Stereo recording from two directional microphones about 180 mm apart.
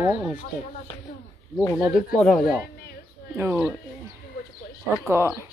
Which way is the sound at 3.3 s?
10° right (ahead or behind).